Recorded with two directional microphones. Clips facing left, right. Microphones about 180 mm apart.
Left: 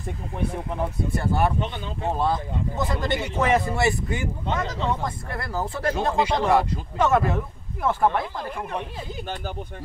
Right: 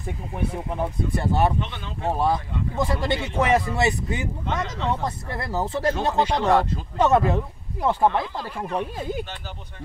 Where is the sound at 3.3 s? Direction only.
15° right (ahead or behind).